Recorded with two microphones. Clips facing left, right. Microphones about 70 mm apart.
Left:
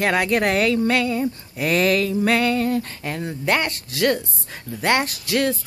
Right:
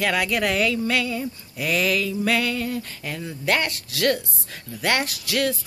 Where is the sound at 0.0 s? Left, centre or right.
Left.